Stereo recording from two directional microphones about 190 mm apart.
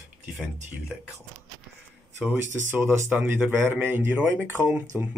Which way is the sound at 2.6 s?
15° right (ahead or behind).